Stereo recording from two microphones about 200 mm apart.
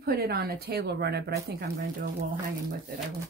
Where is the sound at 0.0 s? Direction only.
50° right (ahead or behind).